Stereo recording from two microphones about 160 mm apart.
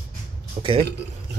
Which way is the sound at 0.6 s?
25° right (ahead or behind).